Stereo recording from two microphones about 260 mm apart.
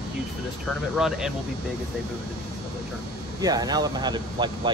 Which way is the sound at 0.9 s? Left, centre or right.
Centre.